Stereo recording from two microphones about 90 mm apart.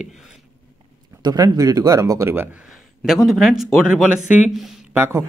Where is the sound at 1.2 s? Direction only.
45° right (ahead or behind); by 2.5 s 25° right (ahead or behind).